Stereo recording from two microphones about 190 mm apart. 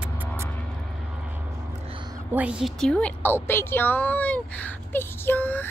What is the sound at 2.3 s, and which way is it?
A woman's voice, 5° right (ahead or behind).